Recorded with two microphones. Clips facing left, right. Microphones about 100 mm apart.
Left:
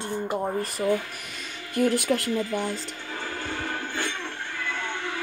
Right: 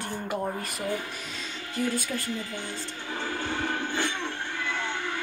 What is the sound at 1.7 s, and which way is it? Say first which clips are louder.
Speech: left 7 dB; 65° left (ahead or behind).